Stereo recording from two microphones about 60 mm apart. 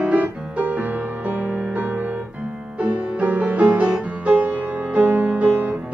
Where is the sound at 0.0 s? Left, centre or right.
Right.